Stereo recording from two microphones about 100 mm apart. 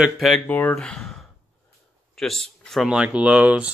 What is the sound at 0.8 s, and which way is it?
Speech, 5° left (ahead or behind).